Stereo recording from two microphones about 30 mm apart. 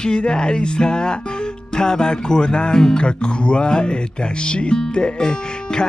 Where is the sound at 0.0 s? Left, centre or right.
Left.